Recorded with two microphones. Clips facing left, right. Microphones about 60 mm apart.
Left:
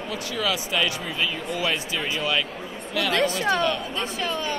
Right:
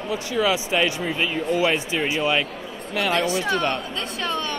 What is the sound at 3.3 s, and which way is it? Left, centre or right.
Speech, left.